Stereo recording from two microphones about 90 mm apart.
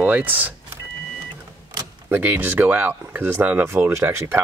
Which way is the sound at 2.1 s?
20° right (ahead or behind).